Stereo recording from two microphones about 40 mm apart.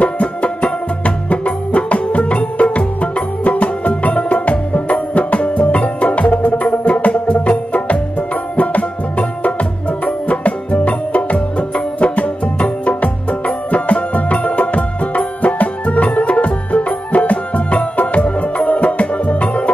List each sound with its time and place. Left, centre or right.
0.0 s music: left
6.3 s music: left
6.7 s music: left
10.2 s music: left